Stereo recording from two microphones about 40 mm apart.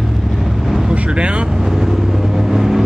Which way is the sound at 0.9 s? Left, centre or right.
Right.